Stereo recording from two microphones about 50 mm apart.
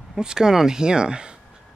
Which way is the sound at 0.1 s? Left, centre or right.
Centre.